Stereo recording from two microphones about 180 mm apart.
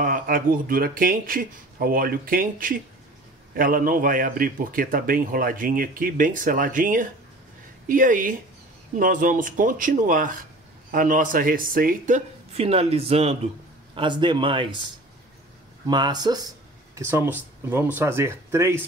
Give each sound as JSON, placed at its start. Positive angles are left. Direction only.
{"t": 0.0, "sound": "a man's voice", "side_deg": -50}
{"t": 12.5, "sound": "a man's voice", "side_deg": -35}
{"t": 15.9, "sound": "speech", "side_deg": -25}